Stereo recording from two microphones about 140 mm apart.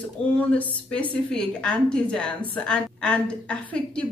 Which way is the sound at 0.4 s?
10° left (ahead or behind).